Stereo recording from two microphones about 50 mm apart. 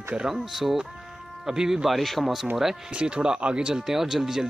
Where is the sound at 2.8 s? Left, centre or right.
Right.